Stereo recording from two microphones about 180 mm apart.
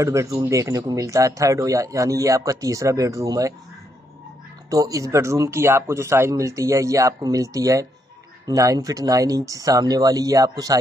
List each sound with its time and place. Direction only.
0.0 s speech: 15° right (ahead or behind)
4.6 s speech: 20° right (ahead or behind)